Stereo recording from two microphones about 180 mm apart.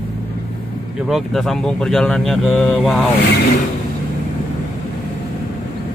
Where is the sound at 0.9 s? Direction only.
Centre (ahead or behind).